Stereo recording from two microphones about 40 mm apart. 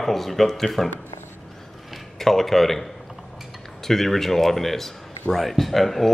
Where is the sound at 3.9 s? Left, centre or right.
Centre.